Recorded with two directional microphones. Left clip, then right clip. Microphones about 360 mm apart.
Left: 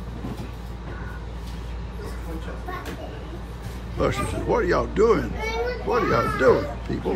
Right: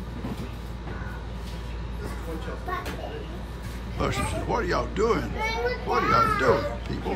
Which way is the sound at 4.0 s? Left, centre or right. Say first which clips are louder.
Left 4 dB; centre.